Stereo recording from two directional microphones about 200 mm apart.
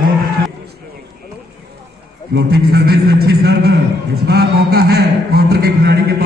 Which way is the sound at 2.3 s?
50° right (ahead or behind).